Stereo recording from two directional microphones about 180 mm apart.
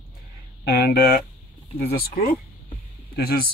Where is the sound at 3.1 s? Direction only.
60° left (ahead or behind).